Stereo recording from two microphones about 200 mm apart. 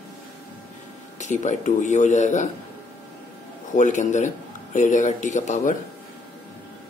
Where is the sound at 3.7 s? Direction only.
40° left (ahead or behind).